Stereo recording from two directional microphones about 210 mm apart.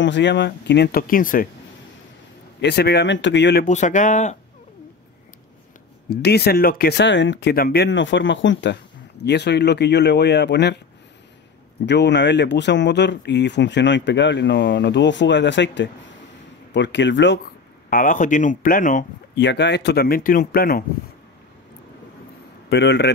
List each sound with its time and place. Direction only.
0.0 s speech: 55° left (ahead or behind); by 1.5 s 40° left (ahead or behind)
2.6 s speech: 50° left (ahead or behind)
3.6 s speech: 35° left (ahead or behind)
6.2 s speech: 50° left (ahead or behind)
11.8 s speech: 55° left (ahead or behind)
17.8 s speech: 40° left (ahead or behind)
19.3 s speech: 55° left (ahead or behind)
22.7 s speech: 55° left (ahead or behind)